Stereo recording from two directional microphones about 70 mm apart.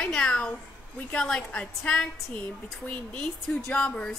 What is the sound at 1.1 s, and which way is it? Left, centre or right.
Speech, centre.